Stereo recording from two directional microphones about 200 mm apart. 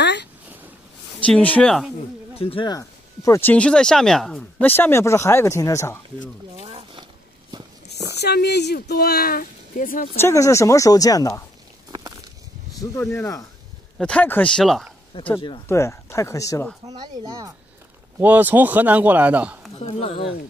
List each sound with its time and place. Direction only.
0.0 s a sound: 60° left (ahead or behind)
1.2 s a man's voice: 5° left (ahead or behind)
2.0 s speech: 30° left (ahead or behind)
6.5 s a sound: 30° right (ahead or behind)
8.2 s speech: 55° left (ahead or behind)
10.1 s speech: 15° left (ahead or behind)
13.0 s a man's voice: 5° left (ahead or behind)
15.4 s speech: 20° left (ahead or behind)
16.8 s speech: 20° right (ahead or behind)
18.2 s a man's voice: 10° right (ahead or behind)
19.8 s speech: 30° left (ahead or behind)